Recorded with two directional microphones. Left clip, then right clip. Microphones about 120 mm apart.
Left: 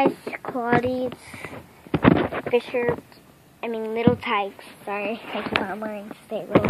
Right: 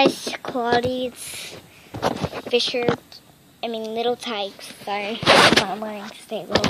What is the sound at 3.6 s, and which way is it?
Speech, 10° right (ahead or behind).